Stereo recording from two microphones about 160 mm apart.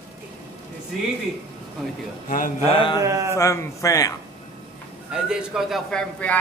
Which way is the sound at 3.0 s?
20° right (ahead or behind).